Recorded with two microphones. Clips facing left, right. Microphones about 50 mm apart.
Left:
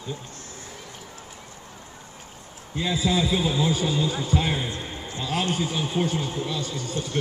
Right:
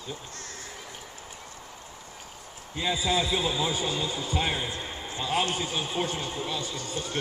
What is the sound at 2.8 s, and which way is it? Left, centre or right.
A man's voice, centre.